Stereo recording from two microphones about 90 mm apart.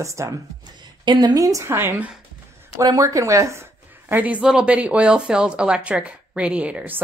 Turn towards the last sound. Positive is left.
turn(degrees=-15)  # may be behind; listen again after turning